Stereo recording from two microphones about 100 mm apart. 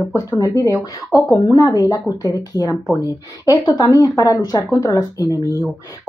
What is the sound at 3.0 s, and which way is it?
Speech, 40° left (ahead or behind).